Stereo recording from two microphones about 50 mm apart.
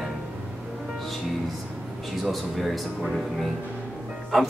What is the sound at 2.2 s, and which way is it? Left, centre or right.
Speech, centre.